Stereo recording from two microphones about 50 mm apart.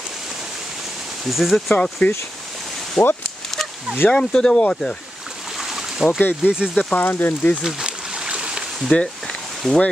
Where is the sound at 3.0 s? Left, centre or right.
Centre.